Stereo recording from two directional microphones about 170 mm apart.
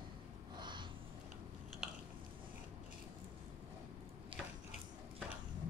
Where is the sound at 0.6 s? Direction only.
25° right (ahead or behind).